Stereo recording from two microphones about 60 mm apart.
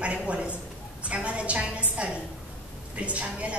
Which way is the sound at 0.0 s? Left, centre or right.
Right.